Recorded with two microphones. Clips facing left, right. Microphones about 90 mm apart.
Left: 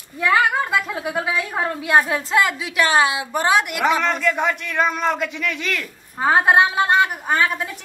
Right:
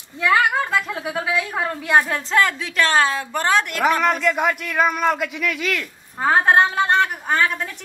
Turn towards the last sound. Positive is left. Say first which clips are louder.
# even
turn(degrees=5)  # may be behind; listen again after turning